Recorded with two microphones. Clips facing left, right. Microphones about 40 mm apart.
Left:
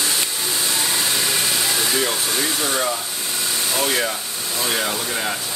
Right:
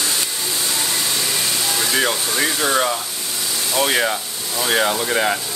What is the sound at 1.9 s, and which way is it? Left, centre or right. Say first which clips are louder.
Speech: right 2 dB; right.